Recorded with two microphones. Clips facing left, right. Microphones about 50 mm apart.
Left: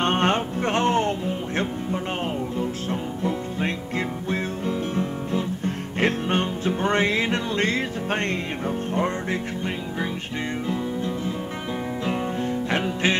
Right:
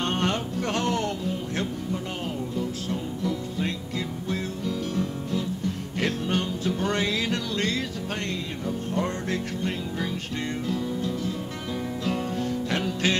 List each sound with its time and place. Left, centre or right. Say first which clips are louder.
0.0 s music: left 5 dB; left
10.7 s music: left 1 dB; left